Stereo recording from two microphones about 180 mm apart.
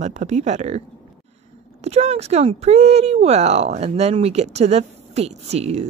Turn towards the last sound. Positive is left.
turn(degrees=-35)  # may be behind; listen again after turning